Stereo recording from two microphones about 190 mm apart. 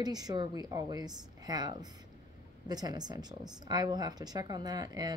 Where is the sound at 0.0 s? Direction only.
20° right (ahead or behind).